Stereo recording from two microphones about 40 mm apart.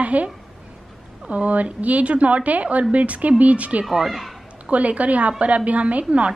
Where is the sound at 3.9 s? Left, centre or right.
Centre.